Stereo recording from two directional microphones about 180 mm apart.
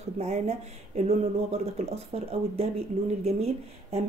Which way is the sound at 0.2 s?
40° right (ahead or behind).